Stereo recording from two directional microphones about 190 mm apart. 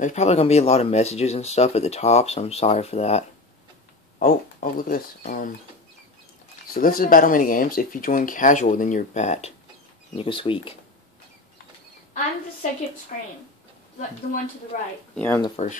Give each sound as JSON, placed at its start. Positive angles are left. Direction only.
{"t": 0.0, "sound": "speech", "side_deg": 35}
{"t": 4.2, "sound": "speech", "side_deg": 45}
{"t": 6.7, "sound": "speech", "side_deg": 50}
{"t": 13.1, "sound": "speech", "side_deg": 45}
{"t": 14.7, "sound": "speech", "side_deg": 40}
{"t": 15.1, "sound": "speech", "side_deg": 10}